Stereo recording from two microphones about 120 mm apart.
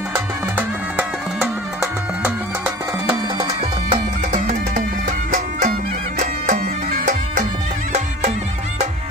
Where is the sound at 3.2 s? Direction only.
50° right (ahead or behind).